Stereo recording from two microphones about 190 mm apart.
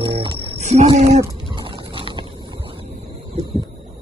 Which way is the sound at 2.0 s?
25° right (ahead or behind).